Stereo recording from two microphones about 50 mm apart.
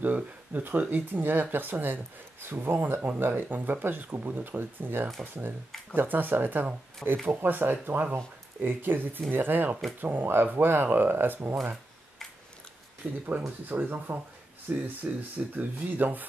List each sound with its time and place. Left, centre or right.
0.0 s speech: right
13.0 s speech: centre
13.7 s speech: right
14.7 s speech: right
15.0 s speech: right